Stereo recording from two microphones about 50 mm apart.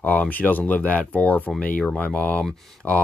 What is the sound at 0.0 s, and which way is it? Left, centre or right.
Speech, left.